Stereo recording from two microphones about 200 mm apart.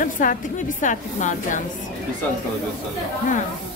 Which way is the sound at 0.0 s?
40° left (ahead or behind).